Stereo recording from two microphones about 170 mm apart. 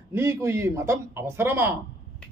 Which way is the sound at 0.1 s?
15° right (ahead or behind).